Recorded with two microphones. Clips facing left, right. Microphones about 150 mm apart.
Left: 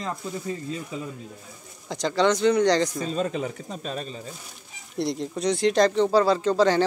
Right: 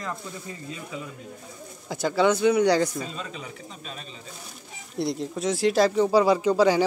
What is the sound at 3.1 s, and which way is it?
Speech, 45° left (ahead or behind).